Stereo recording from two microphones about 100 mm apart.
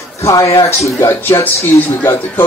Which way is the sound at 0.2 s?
30° left (ahead or behind).